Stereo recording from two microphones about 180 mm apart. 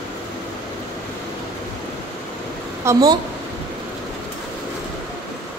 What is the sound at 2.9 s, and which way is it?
Speech, 20° right (ahead or behind).